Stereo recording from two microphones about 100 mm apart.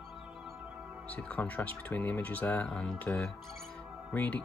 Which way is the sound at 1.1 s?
15° left (ahead or behind).